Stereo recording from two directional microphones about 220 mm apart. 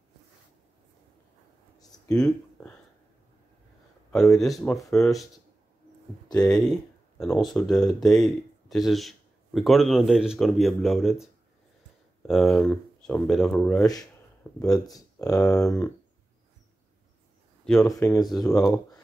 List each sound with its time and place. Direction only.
2.1 s speech: centre (ahead or behind)
4.1 s speech: centre (ahead or behind)
6.5 s speech: centre (ahead or behind)
12.3 s speech: centre (ahead or behind)
14.6 s speech: 15° left (ahead or behind)
15.6 s speech: 5° left (ahead or behind)
17.8 s speech: 15° left (ahead or behind)